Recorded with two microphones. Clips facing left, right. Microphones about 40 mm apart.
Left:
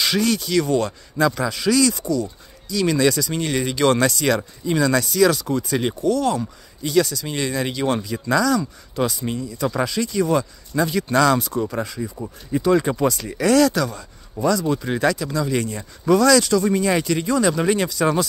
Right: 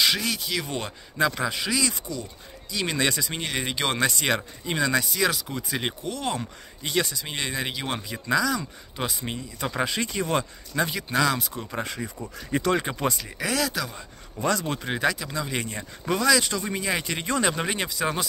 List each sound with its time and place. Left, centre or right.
0.0 s speech: centre
0.7 s speech: right
4.1 s speech: right
9.1 s speech: right
10.1 s speech: right
10.9 s speech: centre
11.8 s speech: right
12.4 s speech: right
13.2 s speech: centre
14.4 s speech: right
14.9 s speech: centre
16.2 s speech: centre
17.0 s speech: right